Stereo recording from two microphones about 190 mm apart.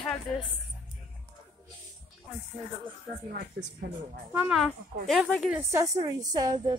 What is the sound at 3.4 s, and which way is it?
Speech, 65° right (ahead or behind).